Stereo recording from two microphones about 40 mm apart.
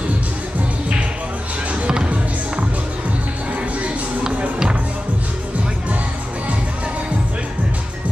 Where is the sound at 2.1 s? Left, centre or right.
Right.